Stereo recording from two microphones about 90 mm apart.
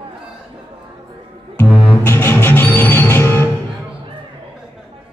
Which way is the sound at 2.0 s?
25° left (ahead or behind).